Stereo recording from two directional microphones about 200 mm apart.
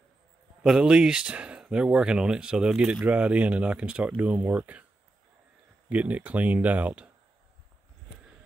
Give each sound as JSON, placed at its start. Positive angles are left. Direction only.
{"t": 0.7, "sound": "speech", "side_deg": -5}
{"t": 5.9, "sound": "speech", "side_deg": -5}